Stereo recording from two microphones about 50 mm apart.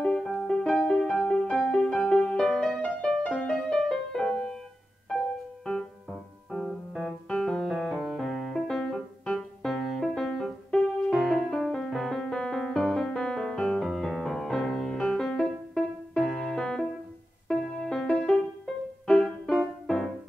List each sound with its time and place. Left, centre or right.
0.0 s music: centre
0.7 s music: centre
5.7 s music: left
7.1 s piano: centre
8.5 s music: centre
9.7 s music: centre
12.7 s music: centre
13.8 s music: centre